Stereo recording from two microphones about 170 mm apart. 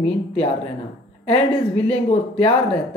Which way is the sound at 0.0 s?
35° left (ahead or behind).